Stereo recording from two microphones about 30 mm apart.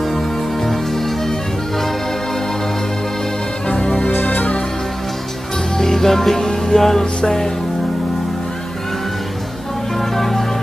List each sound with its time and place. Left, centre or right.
0.7 s music: centre
3.6 s music: left
4.2 s music: left
5.8 s music: centre
9.9 s music: centre